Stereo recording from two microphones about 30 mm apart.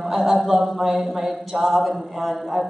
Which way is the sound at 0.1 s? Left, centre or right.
Centre.